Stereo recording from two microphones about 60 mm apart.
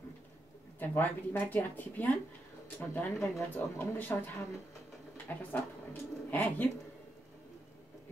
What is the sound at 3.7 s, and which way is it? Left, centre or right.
Speech, left.